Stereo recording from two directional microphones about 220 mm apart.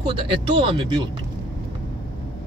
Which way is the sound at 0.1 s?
25° right (ahead or behind).